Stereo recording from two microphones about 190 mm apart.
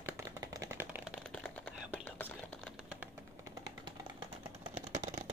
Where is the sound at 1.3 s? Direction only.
5° left (ahead or behind).